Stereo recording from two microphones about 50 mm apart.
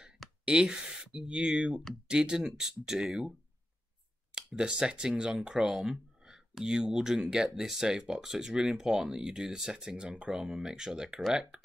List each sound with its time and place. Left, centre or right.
0.5 s speech: centre
4.4 s speech: centre